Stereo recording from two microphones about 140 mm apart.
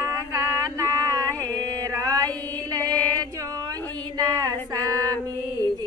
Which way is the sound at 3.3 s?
25° right (ahead or behind).